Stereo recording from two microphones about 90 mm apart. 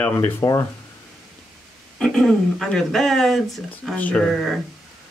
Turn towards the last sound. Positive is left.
turn(degrees=0)  # may be behind; listen again after turning